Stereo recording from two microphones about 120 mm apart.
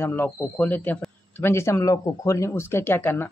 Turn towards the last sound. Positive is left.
turn(degrees=20)  # may be behind; listen again after turning